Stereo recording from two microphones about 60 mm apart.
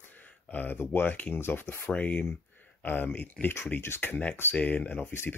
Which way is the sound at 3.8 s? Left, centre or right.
Left.